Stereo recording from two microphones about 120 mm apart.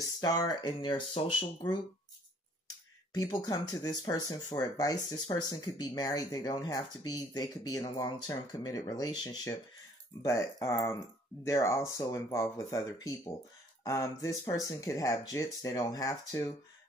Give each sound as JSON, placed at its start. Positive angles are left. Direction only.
{"t": 0.2, "sound": "speech", "side_deg": 35}
{"t": 1.1, "sound": "speech", "side_deg": 55}
{"t": 3.1, "sound": "speech", "side_deg": 35}